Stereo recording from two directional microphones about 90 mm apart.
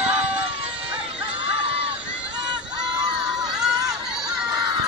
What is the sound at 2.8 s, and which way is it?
Crowd, 10° right (ahead or behind).